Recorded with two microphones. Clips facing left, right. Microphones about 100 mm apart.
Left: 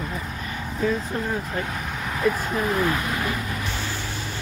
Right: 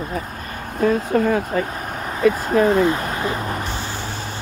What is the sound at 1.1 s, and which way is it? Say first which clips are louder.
Speech: right 9 dB; 75° right (ahead or behind).